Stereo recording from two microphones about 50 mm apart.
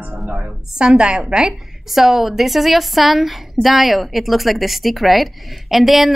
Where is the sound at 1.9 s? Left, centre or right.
Centre.